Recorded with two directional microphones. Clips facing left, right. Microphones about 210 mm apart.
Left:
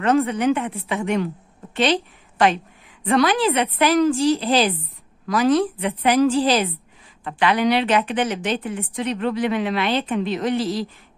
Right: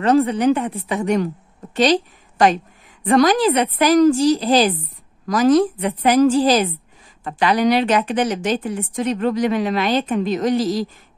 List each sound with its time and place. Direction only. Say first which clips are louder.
0.0 s a woman's voice: right 3 dB; 35° right (ahead or behind)